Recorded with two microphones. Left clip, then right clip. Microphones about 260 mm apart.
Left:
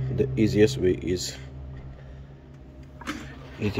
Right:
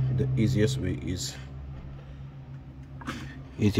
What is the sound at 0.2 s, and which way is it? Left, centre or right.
Speech, centre.